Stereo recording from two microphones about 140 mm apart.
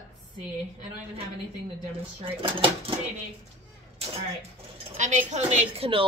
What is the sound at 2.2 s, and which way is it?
Speech, 40° right (ahead or behind).